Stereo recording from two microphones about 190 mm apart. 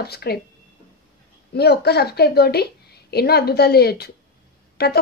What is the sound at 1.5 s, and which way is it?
Speech, 60° left (ahead or behind).